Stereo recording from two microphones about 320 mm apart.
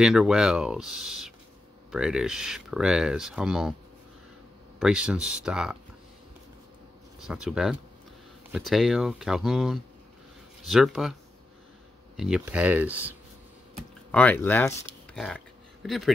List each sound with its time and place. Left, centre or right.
0.0 s speech: centre
4.7 s speech: centre
7.2 s speech: centre
12.2 s speech: centre
14.1 s speech: centre
15.1 s a sound: centre